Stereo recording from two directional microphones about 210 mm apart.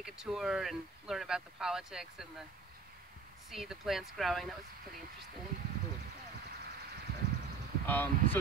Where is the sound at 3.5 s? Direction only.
Centre (ahead or behind).